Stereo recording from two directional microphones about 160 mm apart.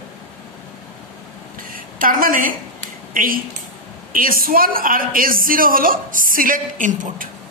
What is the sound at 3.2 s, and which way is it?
A woman's voice, 60° right (ahead or behind).